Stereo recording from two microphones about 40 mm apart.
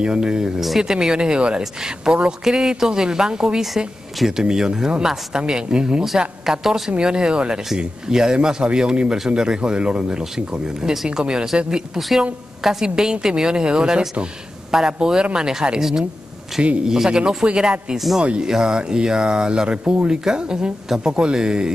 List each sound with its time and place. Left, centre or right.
0.0 s a man's voice: right
0.6 s speech: centre
0.8 s a man's voice: centre
6.1 s a woman's voice: centre
17.9 s a woman's voice: centre
18.4 s a man's voice: centre
19.8 s speech: right
20.1 s a man's voice: centre